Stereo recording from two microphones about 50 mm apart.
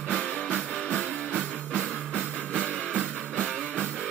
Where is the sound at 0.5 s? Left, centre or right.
Left.